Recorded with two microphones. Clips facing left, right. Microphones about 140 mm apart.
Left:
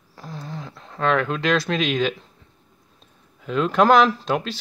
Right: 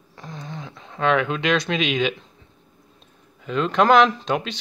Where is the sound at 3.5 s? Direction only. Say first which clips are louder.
Left 1 dB; 5° left (ahead or behind).